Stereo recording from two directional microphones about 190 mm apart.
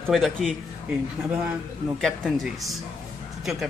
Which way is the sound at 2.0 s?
5° left (ahead or behind).